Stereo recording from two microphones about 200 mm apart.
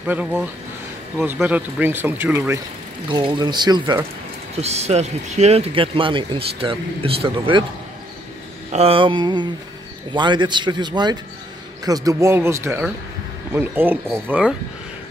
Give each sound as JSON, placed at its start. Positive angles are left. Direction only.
{"t": 0.0, "sound": "speech", "side_deg": -5}
{"t": 3.1, "sound": "speech", "side_deg": -25}
{"t": 4.6, "sound": "speech", "side_deg": -30}
{"t": 8.7, "sound": "speech", "side_deg": -30}